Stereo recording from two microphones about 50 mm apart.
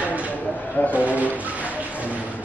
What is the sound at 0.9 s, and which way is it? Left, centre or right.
Speech, right.